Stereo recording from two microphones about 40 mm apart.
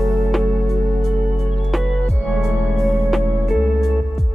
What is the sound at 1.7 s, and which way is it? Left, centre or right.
Music, centre.